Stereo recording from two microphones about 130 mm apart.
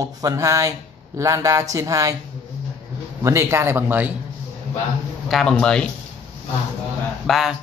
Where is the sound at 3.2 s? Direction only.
20° right (ahead or behind).